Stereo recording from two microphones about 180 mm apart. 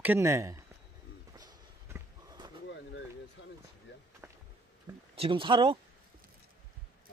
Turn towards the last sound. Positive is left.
turn(degrees=-30)  # may be behind; listen again after turning